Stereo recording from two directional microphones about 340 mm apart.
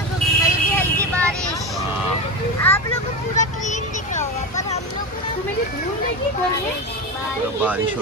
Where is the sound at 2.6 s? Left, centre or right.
Centre.